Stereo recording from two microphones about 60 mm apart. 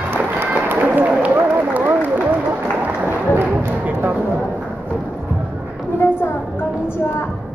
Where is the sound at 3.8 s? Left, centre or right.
Right.